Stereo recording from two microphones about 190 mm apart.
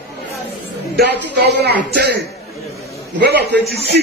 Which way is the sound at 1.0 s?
60° right (ahead or behind).